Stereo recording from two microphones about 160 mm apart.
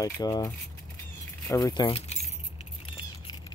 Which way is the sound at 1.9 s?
40° left (ahead or behind).